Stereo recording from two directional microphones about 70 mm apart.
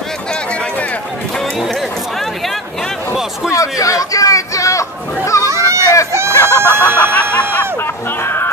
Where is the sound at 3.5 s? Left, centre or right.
Left.